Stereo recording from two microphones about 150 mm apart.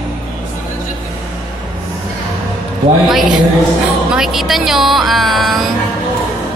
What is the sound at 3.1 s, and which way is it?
Speech, centre (ahead or behind).